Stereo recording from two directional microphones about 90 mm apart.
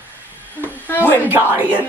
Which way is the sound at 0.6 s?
20° left (ahead or behind).